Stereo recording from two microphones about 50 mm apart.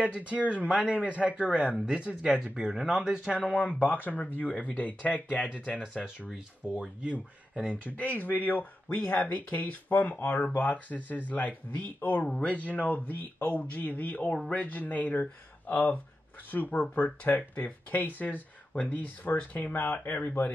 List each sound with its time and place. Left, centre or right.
0.0 s a man's voice: right
0.7 s a man's voice: centre
3.3 s speech: left
6.6 s a man's voice: centre
7.8 s speech: left